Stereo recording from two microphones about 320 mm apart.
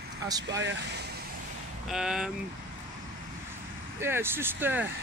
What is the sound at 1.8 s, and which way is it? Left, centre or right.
Speech, centre.